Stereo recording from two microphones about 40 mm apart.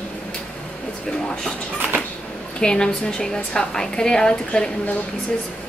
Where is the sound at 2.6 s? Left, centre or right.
Left.